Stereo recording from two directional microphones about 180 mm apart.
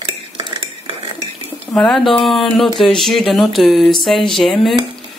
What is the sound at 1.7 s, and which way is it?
Speech, centre (ahead or behind).